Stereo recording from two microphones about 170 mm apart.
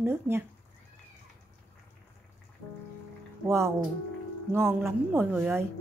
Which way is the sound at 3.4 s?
15° right (ahead or behind).